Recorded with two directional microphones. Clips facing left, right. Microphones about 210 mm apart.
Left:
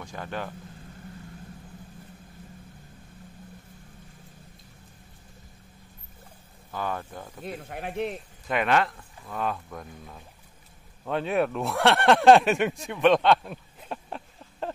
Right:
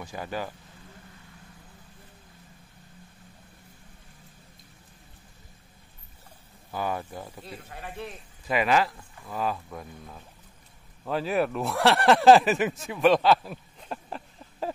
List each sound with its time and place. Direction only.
0.0 s speech: 5° right (ahead or behind)
6.7 s speech: 10° right (ahead or behind)
7.4 s speech: 60° left (ahead or behind); by 8.2 s 85° left
8.5 s speech: centre (ahead or behind)